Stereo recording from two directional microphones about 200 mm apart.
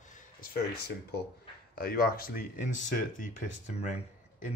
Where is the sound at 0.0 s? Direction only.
40° left (ahead or behind).